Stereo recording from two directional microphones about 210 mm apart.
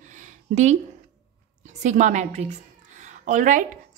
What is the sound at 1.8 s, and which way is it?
A woman's voice, 35° right (ahead or behind).